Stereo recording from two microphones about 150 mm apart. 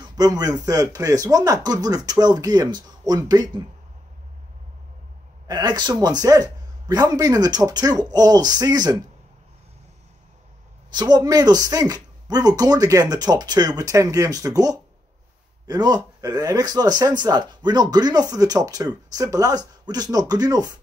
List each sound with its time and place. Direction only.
0.0 s speech: 25° right (ahead or behind)
5.5 s speech: 30° right (ahead or behind)
10.9 s speech: 25° right (ahead or behind)